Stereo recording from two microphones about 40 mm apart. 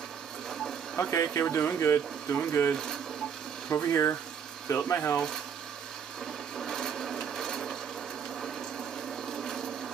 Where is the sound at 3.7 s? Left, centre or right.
Left.